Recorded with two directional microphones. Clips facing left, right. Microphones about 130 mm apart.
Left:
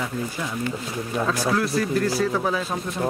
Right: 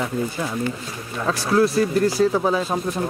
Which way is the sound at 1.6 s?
30° right (ahead or behind).